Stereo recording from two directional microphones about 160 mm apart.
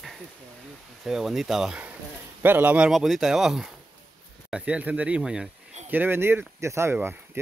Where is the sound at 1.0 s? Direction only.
Centre (ahead or behind).